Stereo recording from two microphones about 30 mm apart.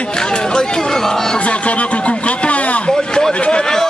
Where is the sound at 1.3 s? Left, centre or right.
Left.